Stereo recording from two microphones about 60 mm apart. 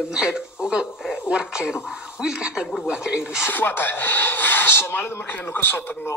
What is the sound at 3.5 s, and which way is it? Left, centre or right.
Speech, left.